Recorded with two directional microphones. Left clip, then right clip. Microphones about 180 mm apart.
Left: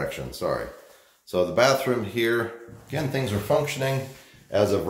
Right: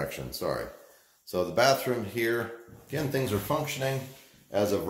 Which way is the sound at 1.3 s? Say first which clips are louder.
Left 4 dB; 5° left (ahead or behind).